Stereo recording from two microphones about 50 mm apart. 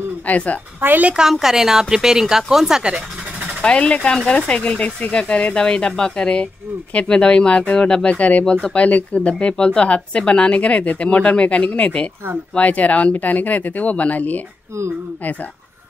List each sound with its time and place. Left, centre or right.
0.3 s speech: left
0.7 s speech: right
1.3 s a woman's voice: centre
3.6 s speech: left